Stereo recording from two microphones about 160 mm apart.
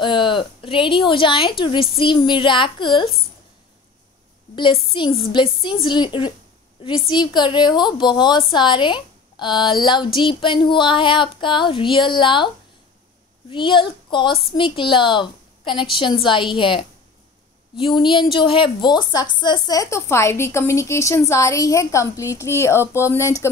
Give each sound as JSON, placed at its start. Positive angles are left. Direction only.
{"t": 0.0, "sound": "a woman's voice", "side_deg": 30}
{"t": 4.9, "sound": "a woman's voice", "side_deg": 30}
{"t": 13.5, "sound": "a woman's voice", "side_deg": 30}